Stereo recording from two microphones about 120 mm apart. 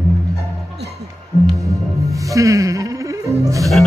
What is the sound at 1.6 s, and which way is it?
Music, 25° right (ahead or behind).